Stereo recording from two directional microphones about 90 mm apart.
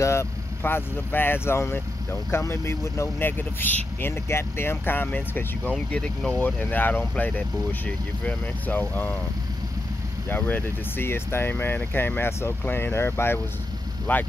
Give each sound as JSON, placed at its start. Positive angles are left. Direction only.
{"t": 0.0, "sound": "speech", "side_deg": 30}
{"t": 5.9, "sound": "speech", "side_deg": 10}
{"t": 10.3, "sound": "speech", "side_deg": 25}